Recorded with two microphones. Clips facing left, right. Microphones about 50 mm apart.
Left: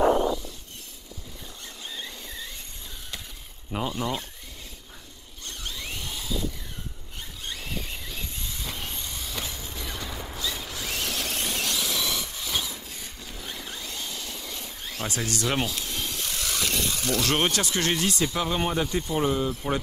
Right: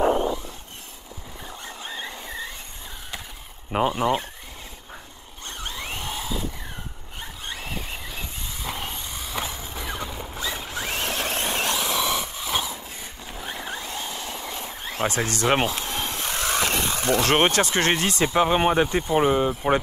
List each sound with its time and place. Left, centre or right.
1.9 s squeal: right
3.7 s speech: right
5.5 s a sound: right
19.1 s speech: right